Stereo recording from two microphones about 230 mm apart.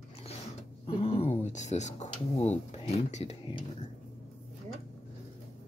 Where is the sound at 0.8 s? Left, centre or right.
Left.